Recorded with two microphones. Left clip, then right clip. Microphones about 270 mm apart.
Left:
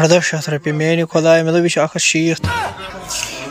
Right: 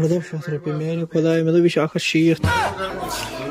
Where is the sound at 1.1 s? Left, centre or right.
Centre.